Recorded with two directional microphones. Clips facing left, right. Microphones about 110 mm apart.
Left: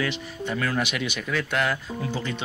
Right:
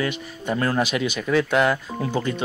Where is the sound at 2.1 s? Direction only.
50° right (ahead or behind).